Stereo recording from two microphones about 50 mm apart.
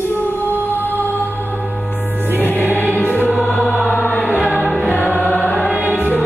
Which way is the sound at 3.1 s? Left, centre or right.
Left.